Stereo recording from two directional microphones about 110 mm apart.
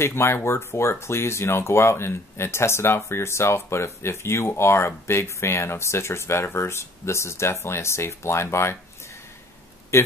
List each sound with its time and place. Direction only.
0.0 s speech: 25° left (ahead or behind)
9.9 s speech: 25° left (ahead or behind)